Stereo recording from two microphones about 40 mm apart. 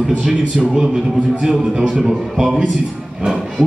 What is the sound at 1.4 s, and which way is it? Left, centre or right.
A man's voice, centre.